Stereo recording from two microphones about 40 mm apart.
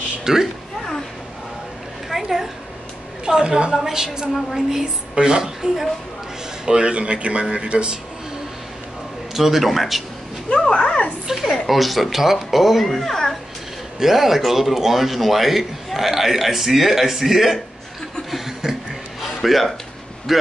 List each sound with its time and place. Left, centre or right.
0.2 s speech: centre
2.2 s speech: centre; by 8.0 s right
9.3 s speech: centre
11.4 s speech: centre
13.9 s speech: centre
18.3 s chuckle: centre
19.2 s a sound: centre
20.3 s speech: centre